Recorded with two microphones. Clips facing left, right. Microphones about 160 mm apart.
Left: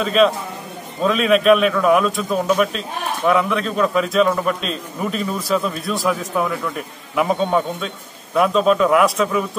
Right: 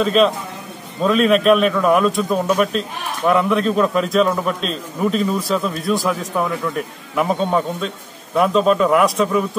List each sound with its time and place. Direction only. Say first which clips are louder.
0.0 s a man's voice: right 1 dB; centre (ahead or behind)